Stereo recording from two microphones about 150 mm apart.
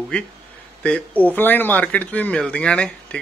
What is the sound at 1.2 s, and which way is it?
A man's voice, 10° left (ahead or behind).